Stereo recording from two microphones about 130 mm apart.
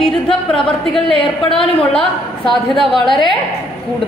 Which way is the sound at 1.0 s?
45° left (ahead or behind).